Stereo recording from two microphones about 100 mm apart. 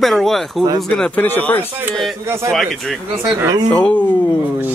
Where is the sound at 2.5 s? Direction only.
Centre (ahead or behind).